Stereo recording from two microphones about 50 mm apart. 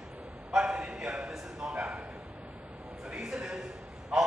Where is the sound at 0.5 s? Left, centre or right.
Centre.